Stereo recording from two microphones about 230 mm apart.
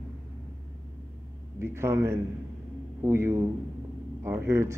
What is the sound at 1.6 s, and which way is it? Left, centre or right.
Speech, centre.